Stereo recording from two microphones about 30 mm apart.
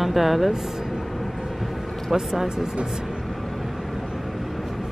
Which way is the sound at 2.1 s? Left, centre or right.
Centre.